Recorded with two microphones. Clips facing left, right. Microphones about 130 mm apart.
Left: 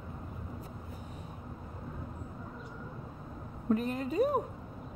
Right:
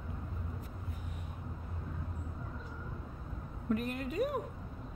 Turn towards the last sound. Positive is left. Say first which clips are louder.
# left 5 dB
turn(degrees=30)  # may be behind; listen again after turning